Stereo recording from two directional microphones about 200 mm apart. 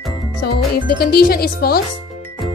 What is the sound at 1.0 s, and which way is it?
Music, 50° left (ahead or behind).